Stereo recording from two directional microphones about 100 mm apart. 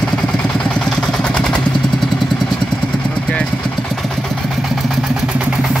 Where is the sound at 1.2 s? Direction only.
10° left (ahead or behind).